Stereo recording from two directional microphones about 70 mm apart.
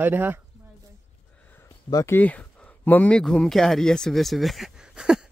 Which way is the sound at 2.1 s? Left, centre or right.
Left.